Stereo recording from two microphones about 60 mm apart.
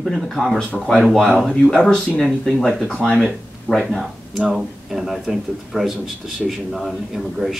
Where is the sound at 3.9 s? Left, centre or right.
Centre.